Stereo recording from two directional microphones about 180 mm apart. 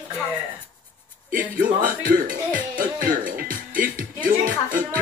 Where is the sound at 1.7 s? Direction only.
50° right (ahead or behind).